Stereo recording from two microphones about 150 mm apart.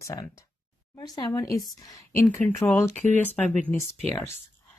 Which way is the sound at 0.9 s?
25° left (ahead or behind).